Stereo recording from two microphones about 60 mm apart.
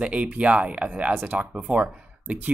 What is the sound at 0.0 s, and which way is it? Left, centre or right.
Speech, centre.